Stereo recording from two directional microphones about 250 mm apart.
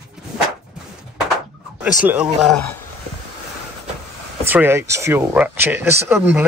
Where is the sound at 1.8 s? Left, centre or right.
Centre.